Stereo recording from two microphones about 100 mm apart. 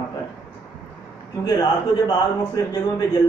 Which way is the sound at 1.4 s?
35° left (ahead or behind).